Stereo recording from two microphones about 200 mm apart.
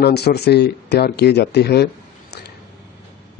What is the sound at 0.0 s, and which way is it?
Speech, 55° left (ahead or behind).